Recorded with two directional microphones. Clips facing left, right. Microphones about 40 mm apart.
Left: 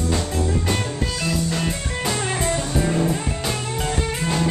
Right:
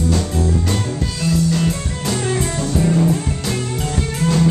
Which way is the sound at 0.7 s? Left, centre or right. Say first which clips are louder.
Right 2 dB; centre.